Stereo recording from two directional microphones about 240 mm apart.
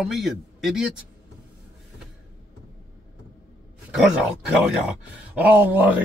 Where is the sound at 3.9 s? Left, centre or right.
Centre.